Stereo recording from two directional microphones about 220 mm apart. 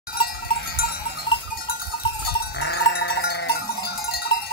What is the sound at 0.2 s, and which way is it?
Cowbell, 45° left (ahead or behind).